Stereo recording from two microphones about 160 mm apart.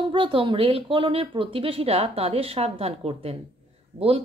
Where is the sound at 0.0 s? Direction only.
30° right (ahead or behind).